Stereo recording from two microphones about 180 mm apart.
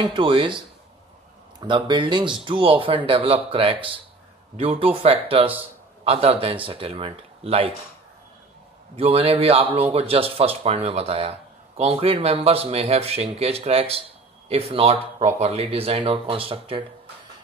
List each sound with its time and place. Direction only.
0.0 s speech: 25° right (ahead or behind)
8.9 s speech: 30° right (ahead or behind)